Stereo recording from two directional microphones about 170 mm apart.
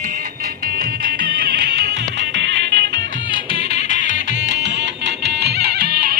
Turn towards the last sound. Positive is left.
turn(degrees=-65)  # may be behind; listen again after turning